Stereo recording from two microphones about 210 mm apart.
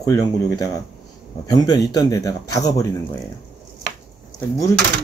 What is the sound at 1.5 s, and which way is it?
Speech, 15° left (ahead or behind).